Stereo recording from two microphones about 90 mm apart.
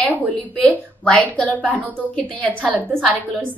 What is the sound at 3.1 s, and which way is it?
Speech, 20° right (ahead or behind).